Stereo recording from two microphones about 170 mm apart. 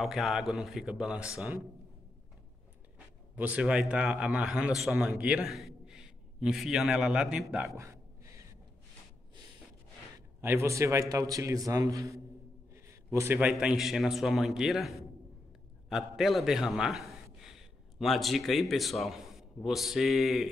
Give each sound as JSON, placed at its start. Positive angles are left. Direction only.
{"t": 0.0, "sound": "a man's voice", "side_deg": 0}
{"t": 3.3, "sound": "a man's voice", "side_deg": -10}
{"t": 7.7, "sound": "a sound", "side_deg": -15}
{"t": 10.4, "sound": "a man's voice", "side_deg": -15}